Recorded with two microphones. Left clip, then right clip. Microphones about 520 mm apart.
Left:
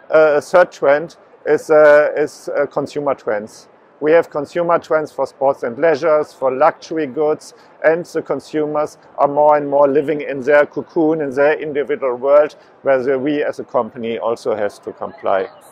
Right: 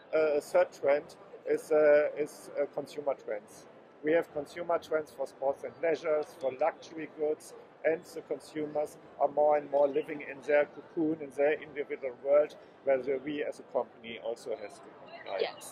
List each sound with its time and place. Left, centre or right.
0.1 s speech: left